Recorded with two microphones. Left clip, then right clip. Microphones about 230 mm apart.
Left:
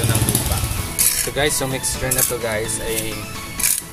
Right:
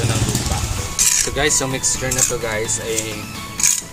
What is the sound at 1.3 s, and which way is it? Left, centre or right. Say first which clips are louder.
Speech: right 1 dB; centre.